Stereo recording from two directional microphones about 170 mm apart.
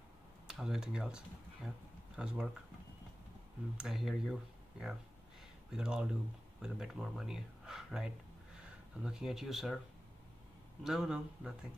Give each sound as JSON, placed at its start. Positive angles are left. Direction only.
{"t": 0.5, "sound": "speech", "side_deg": -5}
{"t": 3.7, "sound": "speech", "side_deg": -5}
{"t": 10.8, "sound": "speech", "side_deg": 0}